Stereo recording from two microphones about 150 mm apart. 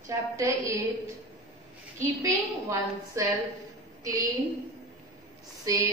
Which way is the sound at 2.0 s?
20° right (ahead or behind).